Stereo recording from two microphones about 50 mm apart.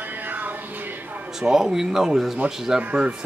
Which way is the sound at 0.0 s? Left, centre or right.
Right.